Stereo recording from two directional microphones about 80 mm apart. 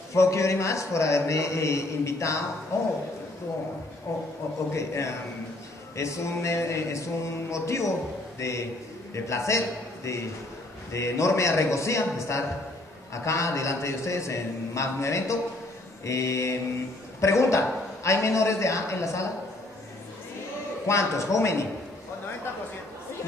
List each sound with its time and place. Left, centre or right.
0.1 s a man's voice: left
4.1 s a man's voice: left
20.8 s a man's voice: left